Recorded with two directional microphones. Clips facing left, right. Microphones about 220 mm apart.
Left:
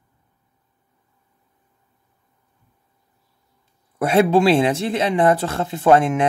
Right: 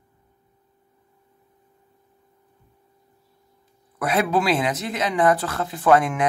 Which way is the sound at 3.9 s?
25° left (ahead or behind).